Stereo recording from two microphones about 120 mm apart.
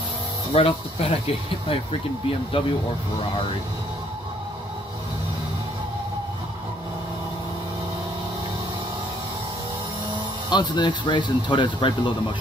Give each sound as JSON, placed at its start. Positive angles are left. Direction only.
{"t": 0.5, "sound": "speech", "side_deg": 50}
{"t": 10.5, "sound": "speech", "side_deg": 40}